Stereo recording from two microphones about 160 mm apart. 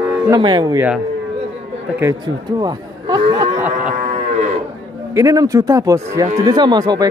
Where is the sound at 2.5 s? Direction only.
25° right (ahead or behind).